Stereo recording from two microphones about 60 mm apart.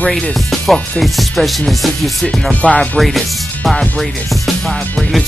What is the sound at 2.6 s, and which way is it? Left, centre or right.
Music, centre.